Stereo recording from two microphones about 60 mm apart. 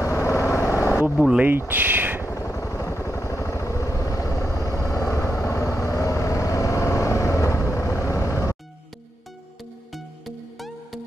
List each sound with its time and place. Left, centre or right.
0.0 s vehicle: left
1.1 s speech: centre
1.7 s a sound: right
2.2 s vehicle: left
9.9 s music: centre